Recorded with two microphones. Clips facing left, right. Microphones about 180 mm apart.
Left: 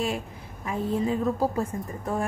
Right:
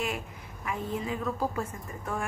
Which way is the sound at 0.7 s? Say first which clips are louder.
Left 6 dB; 35° left (ahead or behind).